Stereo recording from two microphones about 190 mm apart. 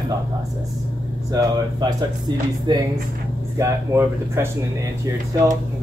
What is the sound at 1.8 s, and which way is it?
Speech, 20° right (ahead or behind).